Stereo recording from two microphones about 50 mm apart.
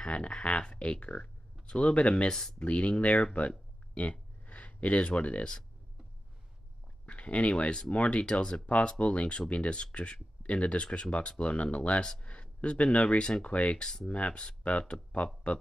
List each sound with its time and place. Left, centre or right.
0.0 s speech: centre
3.3 s a sound: left
7.1 s speech: left
13.7 s speech: centre
14.0 s speech: left